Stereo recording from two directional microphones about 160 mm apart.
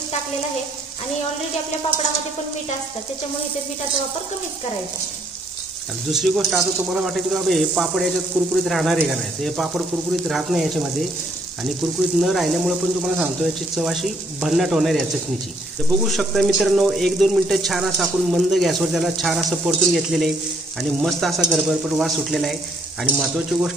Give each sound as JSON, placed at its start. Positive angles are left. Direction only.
{"t": 6.0, "sound": "speech", "side_deg": 0}
{"t": 23.0, "sound": "frying", "side_deg": -10}